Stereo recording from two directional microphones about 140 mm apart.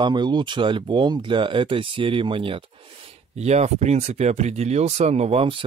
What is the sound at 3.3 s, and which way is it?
Speech, 50° right (ahead or behind).